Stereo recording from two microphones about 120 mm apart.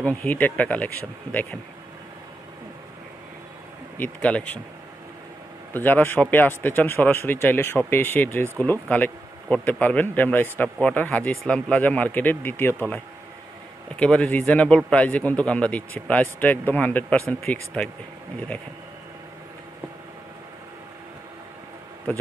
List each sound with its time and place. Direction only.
0.0 s speech: 10° left (ahead or behind)
4.0 s speech: 10° left (ahead or behind)
5.7 s speech: 15° left (ahead or behind)
13.9 s speech: 10° left (ahead or behind)